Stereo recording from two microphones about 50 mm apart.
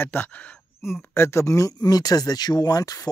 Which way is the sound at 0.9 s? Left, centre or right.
Left.